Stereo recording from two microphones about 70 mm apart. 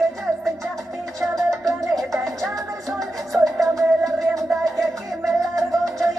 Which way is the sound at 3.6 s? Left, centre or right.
Right.